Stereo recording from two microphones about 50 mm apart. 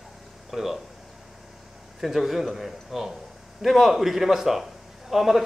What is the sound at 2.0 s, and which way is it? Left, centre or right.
Speech, centre.